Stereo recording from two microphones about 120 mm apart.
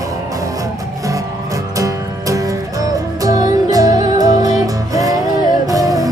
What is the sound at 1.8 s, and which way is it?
Music, 30° right (ahead or behind).